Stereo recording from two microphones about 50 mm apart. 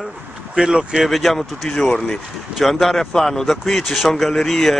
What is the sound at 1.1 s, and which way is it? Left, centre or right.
Speech, centre.